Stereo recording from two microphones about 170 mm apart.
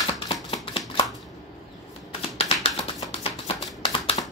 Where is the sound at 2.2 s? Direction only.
40° left (ahead or behind).